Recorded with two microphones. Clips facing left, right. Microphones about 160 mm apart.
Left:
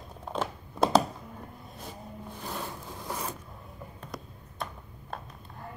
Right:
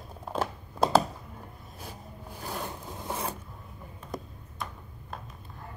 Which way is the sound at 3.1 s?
25° right (ahead or behind).